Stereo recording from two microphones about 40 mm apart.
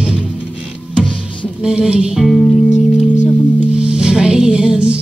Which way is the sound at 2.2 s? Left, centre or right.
Centre.